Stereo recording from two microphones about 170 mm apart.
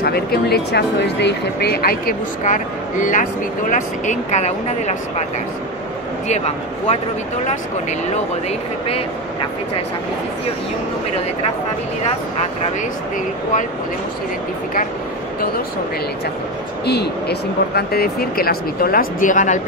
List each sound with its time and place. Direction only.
0.0 s speech: 70° left (ahead or behind); by 5.2 s 40° left (ahead or behind)
6.2 s speech: 40° left (ahead or behind)
8.1 s speech: 35° left (ahead or behind)
16.8 s speech: 75° left (ahead or behind); by 19.6 s 45° left (ahead or behind)